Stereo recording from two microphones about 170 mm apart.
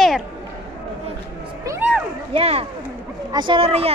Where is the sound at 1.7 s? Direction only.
20° right (ahead or behind).